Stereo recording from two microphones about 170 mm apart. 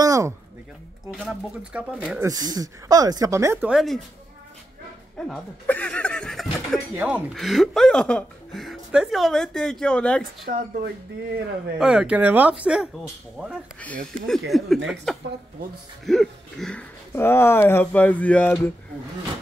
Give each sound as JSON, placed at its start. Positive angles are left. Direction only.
{"t": 0.0, "sound": "a sound", "side_deg": -20}
{"t": 1.2, "sound": "speech", "side_deg": -5}
{"t": 2.2, "sound": "speech", "side_deg": -20}
{"t": 3.6, "sound": "a woman's voice", "side_deg": 0}
{"t": 5.1, "sound": "a woman's voice", "side_deg": 5}
{"t": 7.0, "sound": "a woman's voice", "side_deg": -10}
{"t": 10.4, "sound": "speech", "side_deg": -60}
{"t": 11.8, "sound": "a woman's voice", "side_deg": -5}
{"t": 17.1, "sound": "speech", "side_deg": 15}